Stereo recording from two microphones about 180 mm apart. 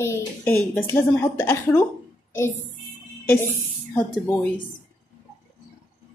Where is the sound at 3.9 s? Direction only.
10° left (ahead or behind).